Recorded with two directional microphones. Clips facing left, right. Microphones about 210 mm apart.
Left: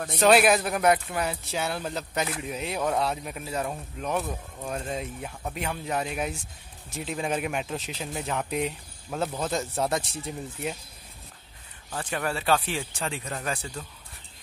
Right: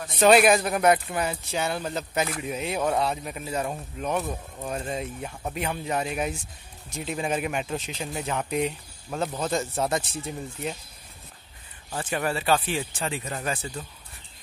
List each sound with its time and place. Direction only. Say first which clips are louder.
0.2 s speech: right 2 dB; centre (ahead or behind)
11.9 s speech: right 2 dB; 10° right (ahead or behind)